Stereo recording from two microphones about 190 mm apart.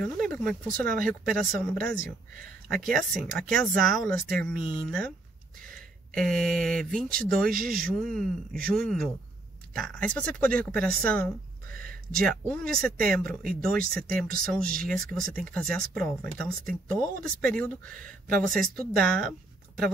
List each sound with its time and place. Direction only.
0.0 s speech: 5° left (ahead or behind)
7.5 s speech: 50° right (ahead or behind)
7.8 s speech: centre (ahead or behind)